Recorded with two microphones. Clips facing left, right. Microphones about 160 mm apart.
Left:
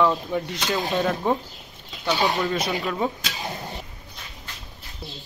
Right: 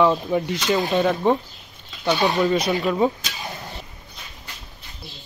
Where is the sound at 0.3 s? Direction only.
5° right (ahead or behind).